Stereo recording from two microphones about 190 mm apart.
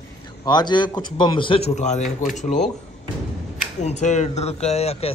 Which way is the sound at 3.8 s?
40° left (ahead or behind).